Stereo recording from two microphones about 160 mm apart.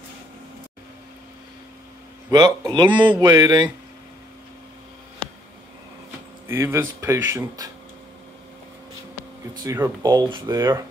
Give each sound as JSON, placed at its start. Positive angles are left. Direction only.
{"t": 2.3, "sound": "speech", "side_deg": -25}
{"t": 6.4, "sound": "speech", "side_deg": -15}
{"t": 9.6, "sound": "speech", "side_deg": -20}